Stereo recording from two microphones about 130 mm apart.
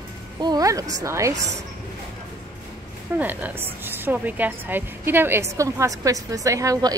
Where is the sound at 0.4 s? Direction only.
30° right (ahead or behind).